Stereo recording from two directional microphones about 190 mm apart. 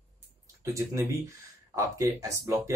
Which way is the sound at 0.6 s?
15° right (ahead or behind).